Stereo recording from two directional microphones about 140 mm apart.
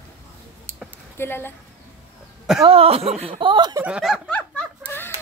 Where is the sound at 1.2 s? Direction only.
15° left (ahead or behind).